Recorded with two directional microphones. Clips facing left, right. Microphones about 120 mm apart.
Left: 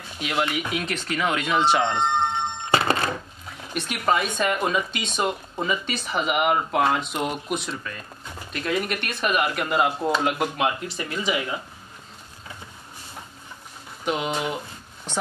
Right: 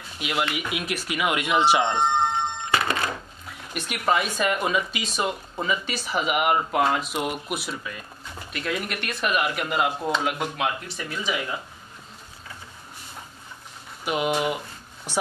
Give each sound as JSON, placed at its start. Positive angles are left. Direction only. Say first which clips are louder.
{"t": 0.2, "sound": "speech", "louder": "left 2 dB", "side_deg": -5}
{"t": 2.7, "sound": "telephone bell ringing", "louder": "left 4 dB", "side_deg": 30}
{"t": 3.7, "sound": "speech", "louder": "left 1 dB", "side_deg": 0}
{"t": 14.0, "sound": "speech", "louder": "right 2 dB", "side_deg": -5}